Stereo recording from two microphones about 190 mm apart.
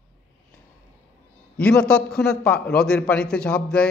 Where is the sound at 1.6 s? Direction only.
5° left (ahead or behind).